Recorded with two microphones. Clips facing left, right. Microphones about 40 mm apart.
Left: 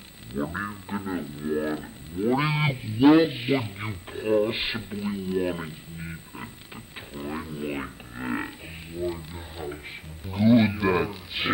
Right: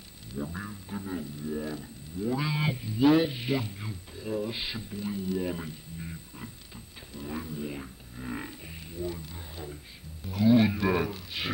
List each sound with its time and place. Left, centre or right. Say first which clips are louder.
0.4 s speech: left 7 dB; left
3.8 s speech: left 8 dB; left
7.2 s a sound: left 3 dB; left
7.7 s music: left 7 dB; left
9.0 s a sound: left 5 dB; left
10.2 s wild animals: left 3 dB; left